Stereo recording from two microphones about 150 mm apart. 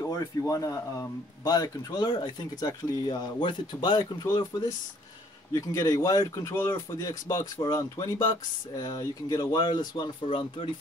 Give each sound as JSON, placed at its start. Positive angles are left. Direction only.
{"t": 0.0, "sound": "speech", "side_deg": 20}